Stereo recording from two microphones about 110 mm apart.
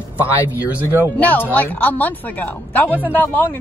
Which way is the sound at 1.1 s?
15° left (ahead or behind).